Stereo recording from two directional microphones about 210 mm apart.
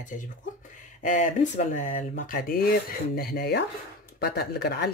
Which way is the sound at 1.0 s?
35° left (ahead or behind).